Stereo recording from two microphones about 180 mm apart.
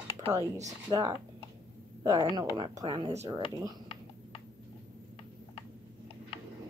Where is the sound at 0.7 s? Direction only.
20° right (ahead or behind).